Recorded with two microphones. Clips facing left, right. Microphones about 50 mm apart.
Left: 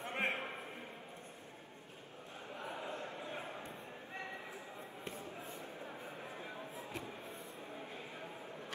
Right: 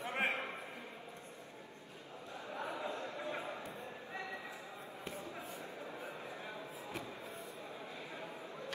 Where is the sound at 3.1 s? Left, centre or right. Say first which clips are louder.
Right 3 dB; right.